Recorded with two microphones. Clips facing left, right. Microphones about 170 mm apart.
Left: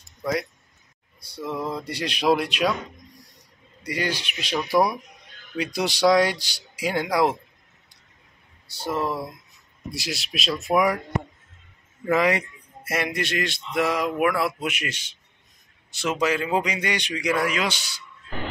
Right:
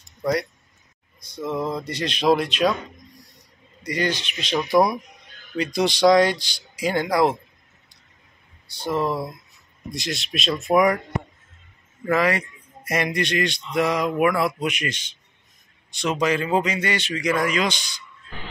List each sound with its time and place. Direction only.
0.2 s speech: centre (ahead or behind)
1.4 s a sound: 20° right (ahead or behind)
1.9 s a man's voice: 10° left (ahead or behind)
3.8 s a man's voice: 10° left (ahead or behind)
5.6 s a man's voice: 10° left (ahead or behind)
8.6 s a man's voice: 5° left (ahead or behind)
12.1 s a man's voice: 20° left (ahead or behind)
12.8 s a man's voice: 5° left (ahead or behind)